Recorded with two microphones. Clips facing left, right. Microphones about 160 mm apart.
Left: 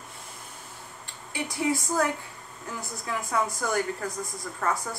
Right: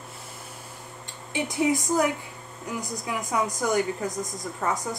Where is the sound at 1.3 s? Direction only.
20° right (ahead or behind).